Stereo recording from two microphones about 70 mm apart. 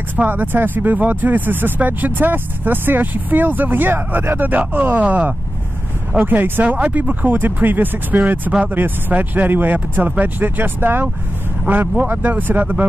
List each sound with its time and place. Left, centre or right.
0.1 s speech: right